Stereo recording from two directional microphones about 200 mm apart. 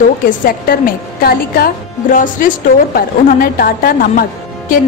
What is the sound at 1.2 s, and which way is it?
A woman's voice, 50° left (ahead or behind).